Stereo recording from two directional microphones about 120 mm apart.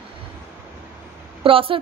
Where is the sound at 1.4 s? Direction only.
50° right (ahead or behind).